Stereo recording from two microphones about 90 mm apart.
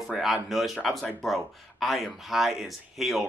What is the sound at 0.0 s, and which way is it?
Speech, centre (ahead or behind).